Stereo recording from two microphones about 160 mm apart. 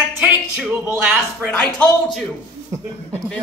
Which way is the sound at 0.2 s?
10° right (ahead or behind).